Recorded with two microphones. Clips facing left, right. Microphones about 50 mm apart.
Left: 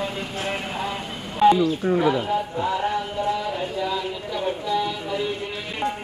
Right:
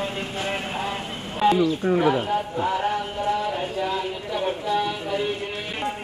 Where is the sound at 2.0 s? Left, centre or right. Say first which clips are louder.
Even; right.